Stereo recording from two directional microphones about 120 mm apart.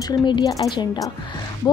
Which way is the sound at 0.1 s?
40° left (ahead or behind).